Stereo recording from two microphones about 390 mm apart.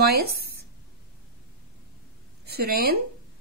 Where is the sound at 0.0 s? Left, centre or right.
Right.